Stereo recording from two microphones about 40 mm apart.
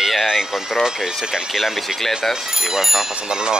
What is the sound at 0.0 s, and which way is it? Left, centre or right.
Speech, centre.